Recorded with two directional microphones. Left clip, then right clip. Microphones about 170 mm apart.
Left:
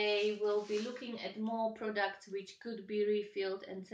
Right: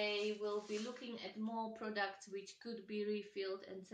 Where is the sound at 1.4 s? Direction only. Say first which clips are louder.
Left 8 dB; 25° right (ahead or behind).